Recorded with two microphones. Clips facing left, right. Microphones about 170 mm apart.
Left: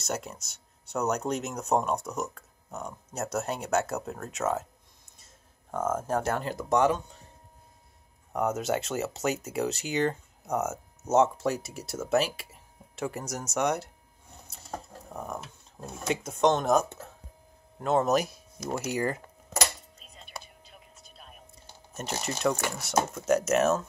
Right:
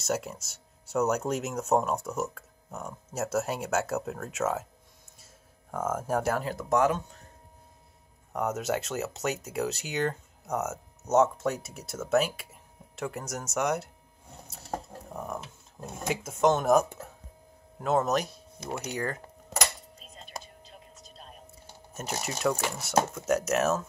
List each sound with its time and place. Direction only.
0.0 s speech: 5° right (ahead or behind)
8.3 s speech: centre (ahead or behind)
15.1 s speech: centre (ahead or behind)
20.0 s whispering: 40° right (ahead or behind)
21.9 s speech: 5° right (ahead or behind)